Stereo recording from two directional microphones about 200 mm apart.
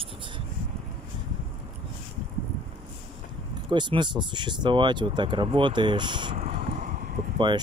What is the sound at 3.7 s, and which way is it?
Speech, 25° right (ahead or behind).